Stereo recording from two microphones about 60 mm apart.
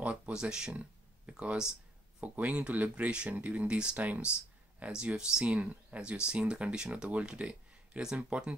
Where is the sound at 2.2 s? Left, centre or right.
Right.